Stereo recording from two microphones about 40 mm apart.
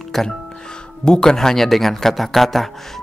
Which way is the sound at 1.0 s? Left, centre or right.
Centre.